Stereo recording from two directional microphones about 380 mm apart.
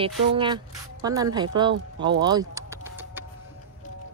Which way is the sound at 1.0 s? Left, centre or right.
Centre.